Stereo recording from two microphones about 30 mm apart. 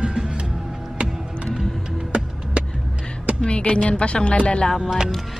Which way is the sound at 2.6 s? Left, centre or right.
Right.